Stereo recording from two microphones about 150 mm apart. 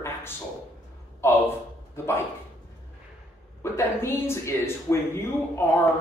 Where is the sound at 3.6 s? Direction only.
15° left (ahead or behind).